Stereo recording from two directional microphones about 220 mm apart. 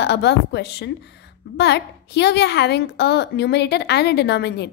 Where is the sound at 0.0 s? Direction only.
50° left (ahead or behind).